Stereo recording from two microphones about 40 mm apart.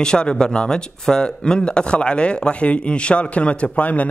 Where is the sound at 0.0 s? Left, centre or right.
Left.